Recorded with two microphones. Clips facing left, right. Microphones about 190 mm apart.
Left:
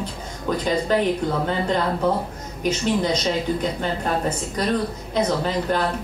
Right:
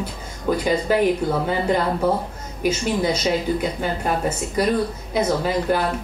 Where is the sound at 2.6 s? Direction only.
5° right (ahead or behind).